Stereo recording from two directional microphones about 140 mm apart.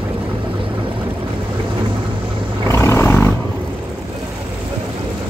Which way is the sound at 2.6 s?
20° left (ahead or behind).